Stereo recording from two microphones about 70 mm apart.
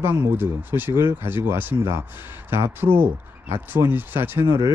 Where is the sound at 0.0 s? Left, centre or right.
Right.